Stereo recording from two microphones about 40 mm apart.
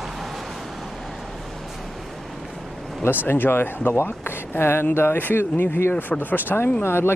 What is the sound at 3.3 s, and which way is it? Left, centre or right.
Speech, left.